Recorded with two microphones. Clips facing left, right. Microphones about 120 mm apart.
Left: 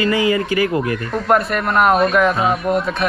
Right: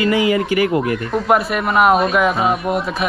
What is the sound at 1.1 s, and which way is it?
A man's voice, 5° right (ahead or behind).